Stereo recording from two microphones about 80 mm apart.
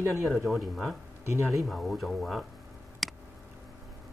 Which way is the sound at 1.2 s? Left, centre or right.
Right.